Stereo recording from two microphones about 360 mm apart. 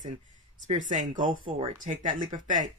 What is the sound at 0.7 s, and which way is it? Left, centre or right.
Speech, right.